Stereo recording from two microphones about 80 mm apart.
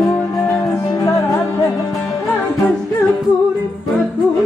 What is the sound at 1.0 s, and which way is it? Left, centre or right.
Music, left.